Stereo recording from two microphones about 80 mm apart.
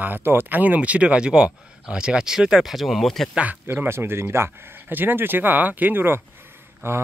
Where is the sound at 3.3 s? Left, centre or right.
Centre.